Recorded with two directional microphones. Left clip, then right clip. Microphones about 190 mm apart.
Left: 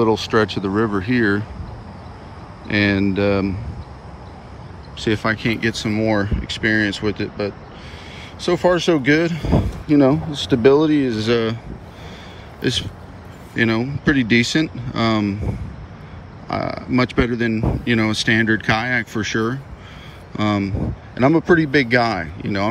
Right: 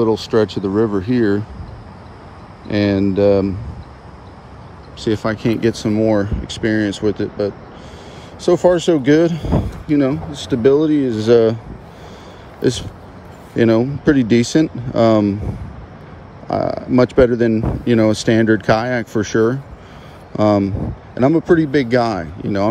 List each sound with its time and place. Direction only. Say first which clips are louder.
0.0 s speech: right 1 dB; 20° right (ahead or behind)
2.7 s speech: right 1 dB; 25° right (ahead or behind)
5.0 s speech: right 1 dB; 20° right (ahead or behind)
9.8 s speech: left 2 dB; 10° right (ahead or behind)
12.6 s speech: right 3 dB; 30° right (ahead or behind)
16.4 s speech: right 5 dB; 25° right (ahead or behind)
21.1 s speech: right 1 dB; 15° right (ahead or behind)